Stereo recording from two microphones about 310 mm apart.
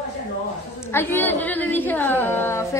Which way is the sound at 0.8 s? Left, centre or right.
Centre.